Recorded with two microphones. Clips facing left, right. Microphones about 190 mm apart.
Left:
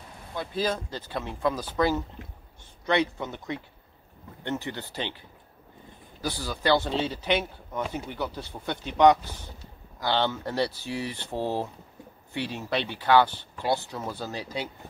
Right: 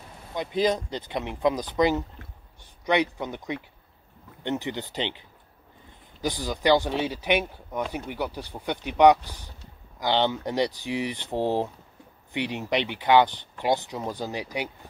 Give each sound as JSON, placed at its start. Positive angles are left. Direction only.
{"t": 0.3, "sound": "speech", "side_deg": -20}
{"t": 6.2, "sound": "speech", "side_deg": -15}